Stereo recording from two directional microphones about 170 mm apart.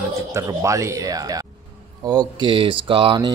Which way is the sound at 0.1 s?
20° right (ahead or behind).